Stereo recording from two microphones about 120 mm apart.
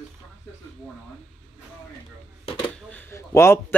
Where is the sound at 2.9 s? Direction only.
20° left (ahead or behind).